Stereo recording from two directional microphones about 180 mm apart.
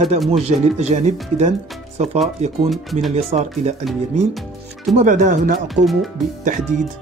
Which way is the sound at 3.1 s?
35° right (ahead or behind).